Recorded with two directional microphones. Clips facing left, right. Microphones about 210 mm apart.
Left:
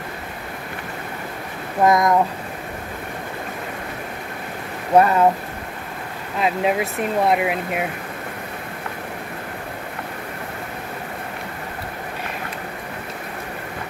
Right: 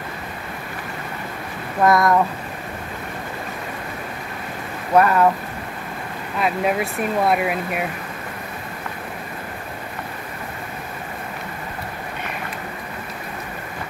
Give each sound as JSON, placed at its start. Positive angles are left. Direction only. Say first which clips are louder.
{"t": 1.8, "sound": "speech", "louder": "even", "side_deg": 20}
{"t": 4.9, "sound": "speech", "louder": "left 1 dB", "side_deg": 25}
{"t": 6.4, "sound": "speech", "louder": "left 1 dB", "side_deg": 20}